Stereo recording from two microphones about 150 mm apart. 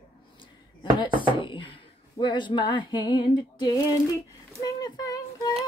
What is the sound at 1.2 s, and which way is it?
Speech, 35° left (ahead or behind).